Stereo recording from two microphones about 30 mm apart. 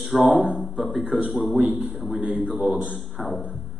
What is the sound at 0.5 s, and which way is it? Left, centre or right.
A man's voice, centre.